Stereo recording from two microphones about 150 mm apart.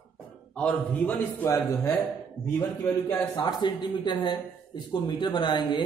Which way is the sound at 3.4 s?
30° left (ahead or behind).